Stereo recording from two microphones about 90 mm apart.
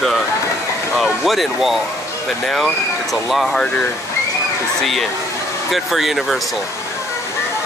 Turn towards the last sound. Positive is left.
turn(degrees=0)  # may be behind; listen again after turning